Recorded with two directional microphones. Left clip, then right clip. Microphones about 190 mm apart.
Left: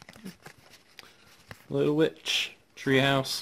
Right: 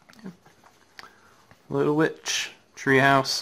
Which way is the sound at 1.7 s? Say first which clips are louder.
Right 2 dB; 30° left (ahead or behind).